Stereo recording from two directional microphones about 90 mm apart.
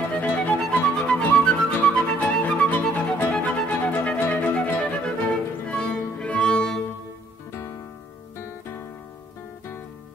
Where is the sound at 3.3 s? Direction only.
15° left (ahead or behind).